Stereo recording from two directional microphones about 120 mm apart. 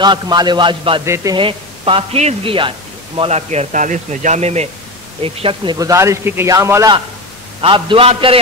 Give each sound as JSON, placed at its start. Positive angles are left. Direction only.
{"t": 0.0, "sound": "a man's voice", "side_deg": -35}
{"t": 1.0, "sound": "a man's voice", "side_deg": -25}
{"t": 1.3, "sound": "a man's voice", "side_deg": -45}
{"t": 5.2, "sound": "speech", "side_deg": -50}
{"t": 5.8, "sound": "a man's voice", "side_deg": -25}
{"t": 7.6, "sound": "speech", "side_deg": -50}